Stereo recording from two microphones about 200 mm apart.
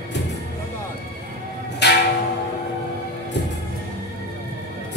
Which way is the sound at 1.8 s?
60° left (ahead or behind).